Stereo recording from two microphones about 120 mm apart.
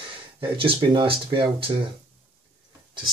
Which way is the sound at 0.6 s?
45° right (ahead or behind).